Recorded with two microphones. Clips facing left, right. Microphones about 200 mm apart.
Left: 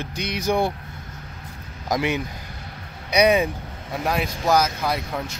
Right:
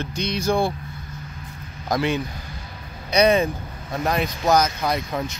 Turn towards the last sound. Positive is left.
turn(degrees=5)  # may be behind; listen again after turning